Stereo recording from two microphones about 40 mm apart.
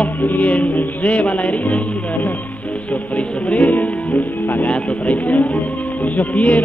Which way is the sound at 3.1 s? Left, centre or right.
Left.